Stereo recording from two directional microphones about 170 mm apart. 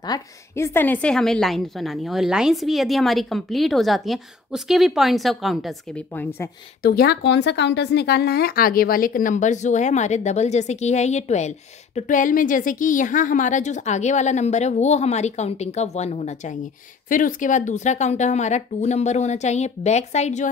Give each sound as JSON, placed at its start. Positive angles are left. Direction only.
{"t": 0.0, "sound": "a woman's voice", "side_deg": 25}
{"t": 0.7, "sound": "a woman's voice", "side_deg": 10}
{"t": 6.8, "sound": "speech", "side_deg": 65}